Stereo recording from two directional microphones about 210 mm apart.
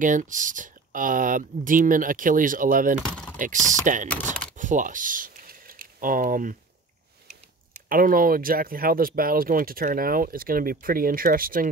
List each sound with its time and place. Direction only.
0.0 s speech: 35° right (ahead or behind)
3.0 s speech: 5° left (ahead or behind)
3.3 s speech: 40° right (ahead or behind)
4.6 s typing: 35° right (ahead or behind)
7.9 s speech: 40° right (ahead or behind)